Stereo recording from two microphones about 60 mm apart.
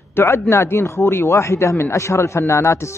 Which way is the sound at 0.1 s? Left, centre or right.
Left.